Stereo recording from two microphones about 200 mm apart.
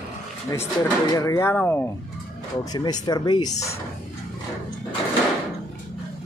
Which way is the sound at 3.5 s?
35° left (ahead or behind).